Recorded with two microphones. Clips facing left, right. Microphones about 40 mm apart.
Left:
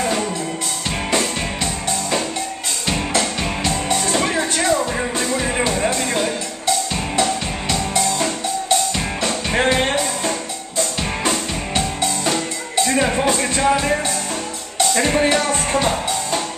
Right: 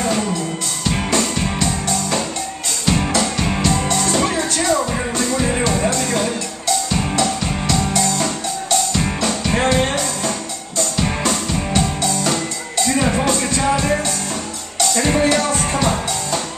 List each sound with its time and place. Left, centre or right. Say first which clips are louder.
0.0 s music: right 1 dB; centre
15.0 s music: right 3 dB; centre